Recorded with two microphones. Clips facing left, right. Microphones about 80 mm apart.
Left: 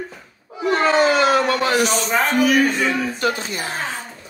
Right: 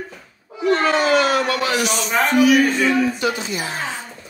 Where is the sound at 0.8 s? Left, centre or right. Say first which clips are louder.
Left 3 dB; left.